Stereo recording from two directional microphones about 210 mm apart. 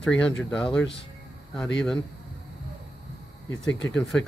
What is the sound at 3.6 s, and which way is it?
Speech, 55° left (ahead or behind).